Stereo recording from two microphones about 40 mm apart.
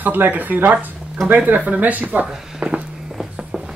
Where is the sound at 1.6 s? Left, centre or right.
Right.